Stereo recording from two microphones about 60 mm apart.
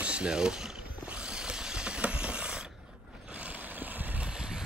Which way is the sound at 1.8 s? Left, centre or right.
Centre.